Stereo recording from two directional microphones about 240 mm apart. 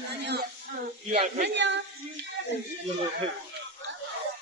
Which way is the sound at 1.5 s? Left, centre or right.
Right.